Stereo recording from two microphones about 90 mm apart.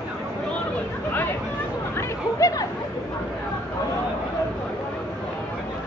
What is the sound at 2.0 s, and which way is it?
Chatter, 35° left (ahead or behind).